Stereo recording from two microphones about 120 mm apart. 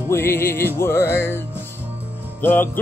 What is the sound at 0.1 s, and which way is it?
Music, 20° left (ahead or behind).